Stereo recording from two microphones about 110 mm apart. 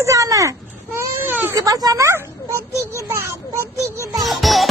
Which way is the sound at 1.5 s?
35° right (ahead or behind).